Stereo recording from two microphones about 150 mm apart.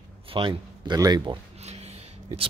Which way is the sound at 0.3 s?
35° right (ahead or behind).